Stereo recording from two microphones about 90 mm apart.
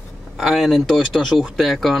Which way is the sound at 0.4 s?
Centre (ahead or behind).